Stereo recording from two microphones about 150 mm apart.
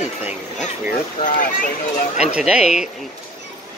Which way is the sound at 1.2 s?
60° left (ahead or behind).